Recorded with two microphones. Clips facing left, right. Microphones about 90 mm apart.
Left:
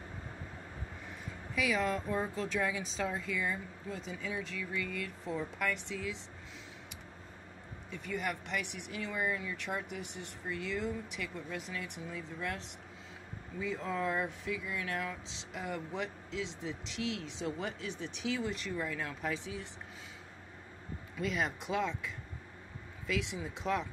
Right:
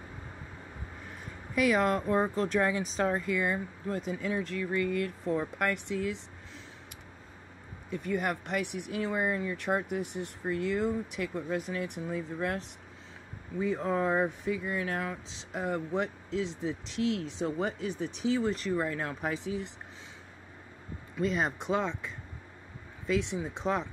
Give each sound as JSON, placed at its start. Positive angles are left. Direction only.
{"t": 1.5, "sound": "speech", "side_deg": -65}
{"t": 7.9, "sound": "speech", "side_deg": -45}
{"t": 21.2, "sound": "speech", "side_deg": -35}